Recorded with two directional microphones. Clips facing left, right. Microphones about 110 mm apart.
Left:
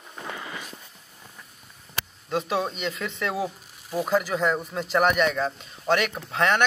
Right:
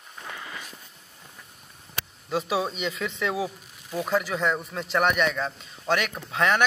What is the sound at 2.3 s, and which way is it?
Speech, 5° right (ahead or behind).